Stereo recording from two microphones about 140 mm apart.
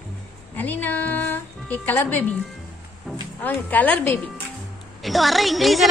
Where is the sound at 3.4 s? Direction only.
10° left (ahead or behind).